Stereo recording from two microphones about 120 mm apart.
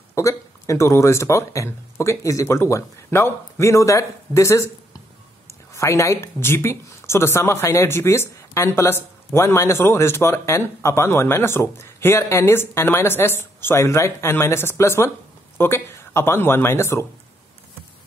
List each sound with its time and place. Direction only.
0.1 s a woman's voice: 25° left (ahead or behind)